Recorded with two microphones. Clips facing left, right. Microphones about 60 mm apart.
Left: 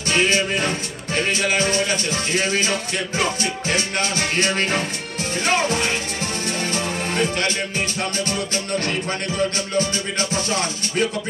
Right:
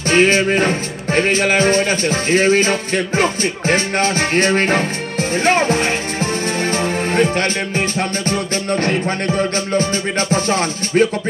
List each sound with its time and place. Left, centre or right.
0.1 s speech: right
6.7 s music: right
8.3 s speech: right